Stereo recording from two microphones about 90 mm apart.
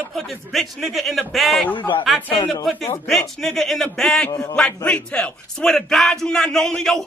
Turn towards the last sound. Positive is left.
turn(degrees=5)  # may be behind; listen again after turning